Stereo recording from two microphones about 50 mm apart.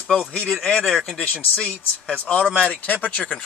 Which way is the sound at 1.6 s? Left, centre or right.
Left.